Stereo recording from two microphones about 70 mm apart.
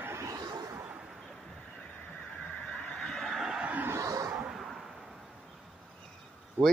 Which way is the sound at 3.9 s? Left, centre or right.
Right.